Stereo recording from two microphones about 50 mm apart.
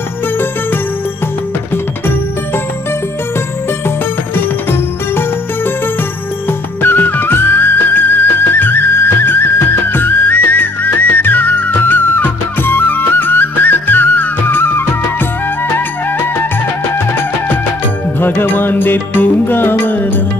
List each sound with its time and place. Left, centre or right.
1.7 s music: left
4.4 s music: left
6.8 s music: left
18.2 s music: left